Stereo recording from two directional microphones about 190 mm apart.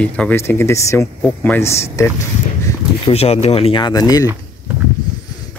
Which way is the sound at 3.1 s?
35° left (ahead or behind).